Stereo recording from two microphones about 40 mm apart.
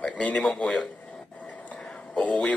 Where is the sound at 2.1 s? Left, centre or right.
Left.